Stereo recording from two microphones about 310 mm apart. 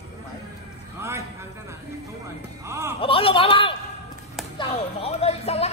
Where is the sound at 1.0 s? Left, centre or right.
Centre.